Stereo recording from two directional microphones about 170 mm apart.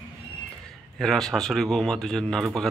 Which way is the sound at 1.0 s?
Centre (ahead or behind).